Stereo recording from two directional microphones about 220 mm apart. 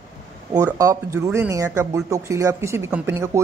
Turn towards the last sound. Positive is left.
turn(degrees=-10)  # may be behind; listen again after turning